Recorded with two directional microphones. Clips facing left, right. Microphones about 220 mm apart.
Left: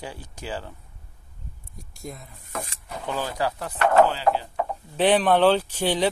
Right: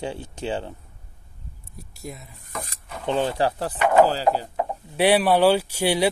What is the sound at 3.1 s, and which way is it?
Speech, 25° right (ahead or behind).